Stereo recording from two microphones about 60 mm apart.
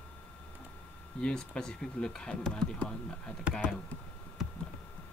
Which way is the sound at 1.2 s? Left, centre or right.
Centre.